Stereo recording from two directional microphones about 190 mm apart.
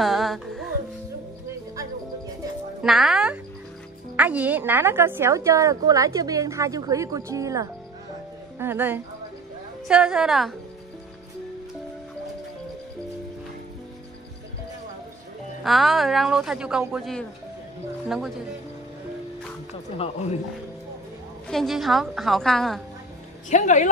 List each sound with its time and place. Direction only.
0.0 s music: centre (ahead or behind)
2.8 s a woman's voice: centre (ahead or behind)
15.6 s speech: centre (ahead or behind)
20.0 s speech: 35° left (ahead or behind)
21.5 s speech: centre (ahead or behind)
23.5 s speech: 40° left (ahead or behind)